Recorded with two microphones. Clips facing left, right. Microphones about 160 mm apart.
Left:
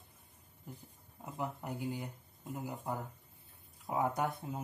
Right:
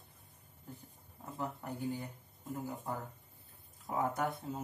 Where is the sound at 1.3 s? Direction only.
15° left (ahead or behind).